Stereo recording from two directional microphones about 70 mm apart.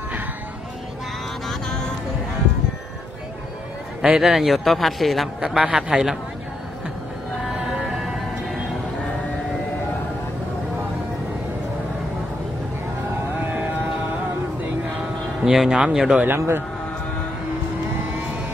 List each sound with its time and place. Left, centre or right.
4.0 s a man's voice: centre
13.4 s a sound: right
15.4 s speech: centre
16.3 s speech: right